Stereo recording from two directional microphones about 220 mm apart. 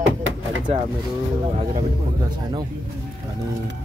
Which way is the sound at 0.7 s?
30° right (ahead or behind).